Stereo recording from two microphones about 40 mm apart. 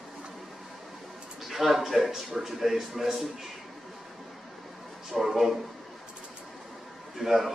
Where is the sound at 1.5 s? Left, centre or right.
Centre.